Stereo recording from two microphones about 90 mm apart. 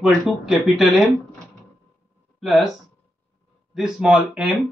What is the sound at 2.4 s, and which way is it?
Speech, centre (ahead or behind).